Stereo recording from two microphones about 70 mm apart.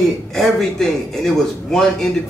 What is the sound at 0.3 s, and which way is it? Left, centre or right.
Speech, centre.